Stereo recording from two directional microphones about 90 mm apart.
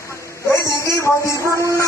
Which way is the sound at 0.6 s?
35° left (ahead or behind).